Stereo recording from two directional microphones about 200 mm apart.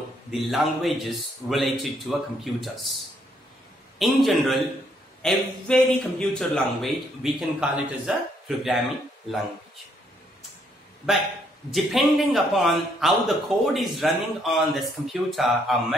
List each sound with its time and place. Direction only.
0.3 s a man's voice: centre (ahead or behind)
4.0 s a man's voice: centre (ahead or behind)
11.7 s a man's voice: centre (ahead or behind)